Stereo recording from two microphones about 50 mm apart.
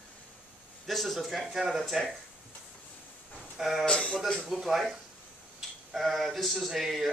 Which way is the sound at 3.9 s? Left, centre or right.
Centre.